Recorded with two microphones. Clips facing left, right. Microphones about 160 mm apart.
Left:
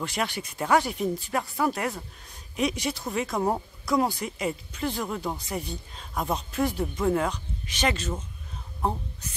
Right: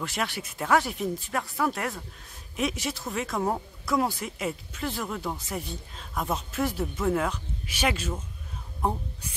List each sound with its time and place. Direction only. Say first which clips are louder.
0.0 s speech: left 2 dB; centre (ahead or behind)